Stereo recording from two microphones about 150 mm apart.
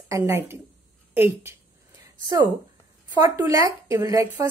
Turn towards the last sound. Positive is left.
turn(degrees=-20)  # may be behind; listen again after turning